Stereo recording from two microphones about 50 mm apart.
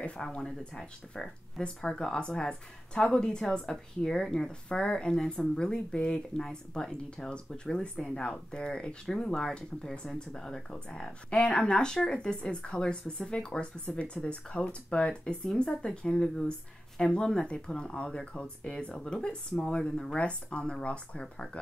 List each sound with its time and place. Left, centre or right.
0.0 s speech: centre